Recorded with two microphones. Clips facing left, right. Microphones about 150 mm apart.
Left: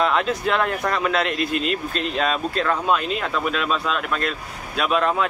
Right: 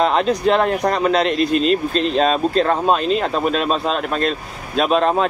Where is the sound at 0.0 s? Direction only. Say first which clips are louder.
Right 5 dB; 25° right (ahead or behind).